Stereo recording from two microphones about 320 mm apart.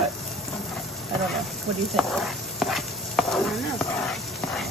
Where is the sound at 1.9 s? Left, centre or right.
Centre.